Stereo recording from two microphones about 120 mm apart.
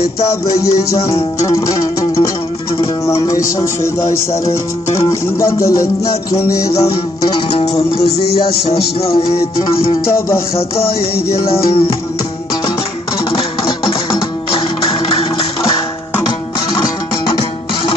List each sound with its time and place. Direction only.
0.2 s music: 25° left (ahead or behind)
7.3 s music: 50° left (ahead or behind)
13.3 s music: 45° left (ahead or behind)